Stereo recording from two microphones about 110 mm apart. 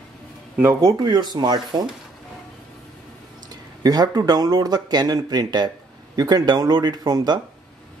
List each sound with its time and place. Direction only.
0.6 s speech: 25° right (ahead or behind)
0.9 s speech: 40° right (ahead or behind)
3.8 s speech: 35° right (ahead or behind)